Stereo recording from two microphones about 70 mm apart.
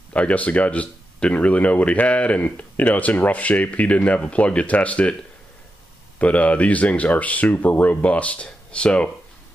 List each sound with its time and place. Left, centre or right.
0.1 s speech: centre
6.1 s speech: left